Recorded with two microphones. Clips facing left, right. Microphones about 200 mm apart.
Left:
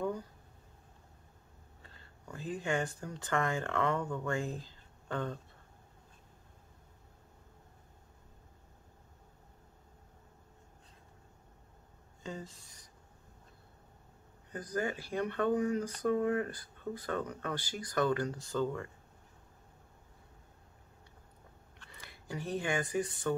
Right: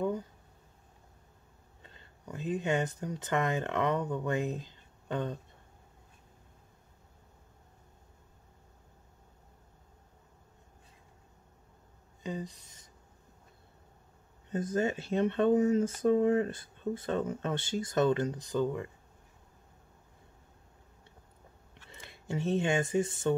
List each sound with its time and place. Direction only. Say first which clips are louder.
1.8 s speech: right 3 dB; 20° right (ahead or behind)
12.2 s speech: right 5 dB; 15° right (ahead or behind)
14.5 s speech: right 5 dB; 25° right (ahead or behind)
21.8 s speech: right 5 dB; 25° right (ahead or behind)